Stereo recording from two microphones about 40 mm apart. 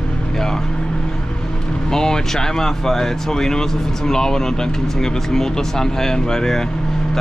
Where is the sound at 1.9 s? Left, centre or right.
Centre.